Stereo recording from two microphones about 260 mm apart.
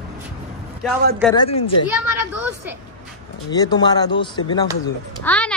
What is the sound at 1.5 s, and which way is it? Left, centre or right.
Speech, left.